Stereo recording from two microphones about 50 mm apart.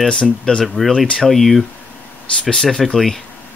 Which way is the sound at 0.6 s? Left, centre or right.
Centre.